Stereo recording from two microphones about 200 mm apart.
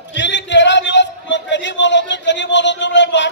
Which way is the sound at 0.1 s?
60° left (ahead or behind).